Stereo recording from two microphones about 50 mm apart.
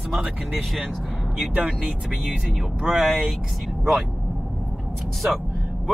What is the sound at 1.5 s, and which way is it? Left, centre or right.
Speech, right.